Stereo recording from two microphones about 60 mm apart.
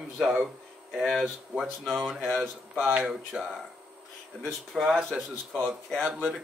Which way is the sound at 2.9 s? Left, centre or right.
Right.